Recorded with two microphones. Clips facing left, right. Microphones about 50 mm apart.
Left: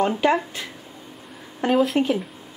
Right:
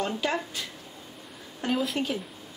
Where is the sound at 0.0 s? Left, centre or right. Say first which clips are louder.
Left 9 dB; left.